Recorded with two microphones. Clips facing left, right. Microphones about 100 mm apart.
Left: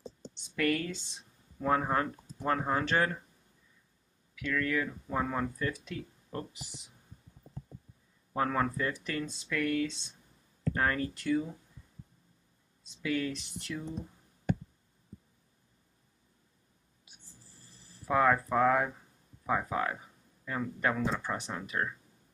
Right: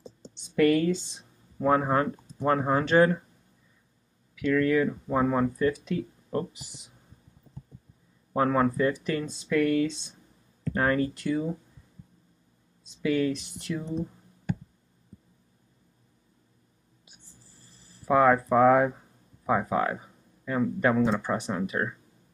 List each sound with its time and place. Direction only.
0.3 s a sound: 20° right (ahead or behind)
1.1 s speech: 15° right (ahead or behind)
4.4 s speech: 20° right (ahead or behind)
8.4 s speech: 20° right (ahead or behind)
13.0 s speech: 15° right (ahead or behind)
18.0 s speech: 15° right (ahead or behind)